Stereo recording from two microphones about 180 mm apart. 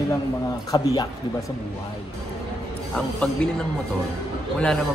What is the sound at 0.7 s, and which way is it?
Speech, 20° left (ahead or behind).